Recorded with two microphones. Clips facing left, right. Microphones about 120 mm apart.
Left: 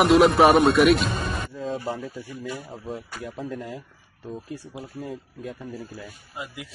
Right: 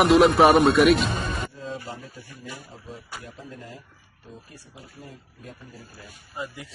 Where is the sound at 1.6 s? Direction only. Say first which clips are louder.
Left 6 dB; 60° left (ahead or behind).